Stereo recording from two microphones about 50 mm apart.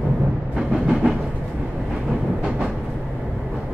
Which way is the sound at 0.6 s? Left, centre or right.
Centre.